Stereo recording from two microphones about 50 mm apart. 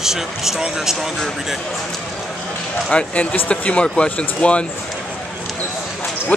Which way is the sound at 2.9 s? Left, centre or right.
Left.